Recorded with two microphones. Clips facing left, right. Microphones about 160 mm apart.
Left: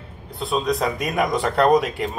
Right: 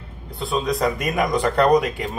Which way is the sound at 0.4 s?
Centre (ahead or behind).